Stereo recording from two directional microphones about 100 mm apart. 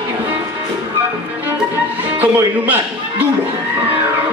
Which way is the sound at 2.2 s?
20° right (ahead or behind).